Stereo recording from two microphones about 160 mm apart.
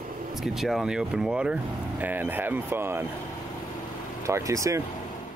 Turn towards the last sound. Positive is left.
turn(degrees=-20)  # may be behind; listen again after turning